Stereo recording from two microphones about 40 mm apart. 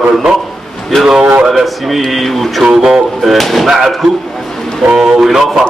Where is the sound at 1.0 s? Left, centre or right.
Centre.